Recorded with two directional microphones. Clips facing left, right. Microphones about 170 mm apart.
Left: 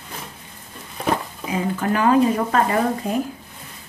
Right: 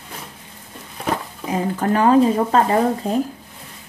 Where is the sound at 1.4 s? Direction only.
40° right (ahead or behind).